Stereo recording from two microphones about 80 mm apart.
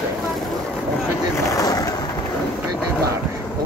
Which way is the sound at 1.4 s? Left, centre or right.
Left.